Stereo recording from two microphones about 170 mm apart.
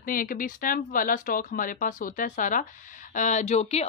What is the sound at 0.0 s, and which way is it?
A woman's voice, 55° left (ahead or behind).